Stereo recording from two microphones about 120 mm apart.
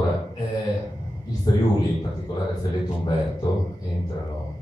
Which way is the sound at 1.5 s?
35° left (ahead or behind).